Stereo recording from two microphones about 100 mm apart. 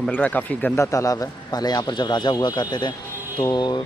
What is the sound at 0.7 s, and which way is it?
A man's voice, 30° left (ahead or behind).